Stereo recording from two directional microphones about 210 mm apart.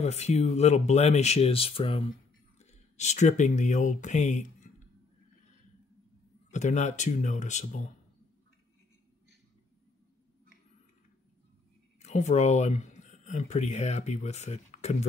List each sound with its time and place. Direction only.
0.0 s speech: 30° left (ahead or behind)
6.5 s speech: 35° left (ahead or behind)
12.0 s speech: 30° left (ahead or behind)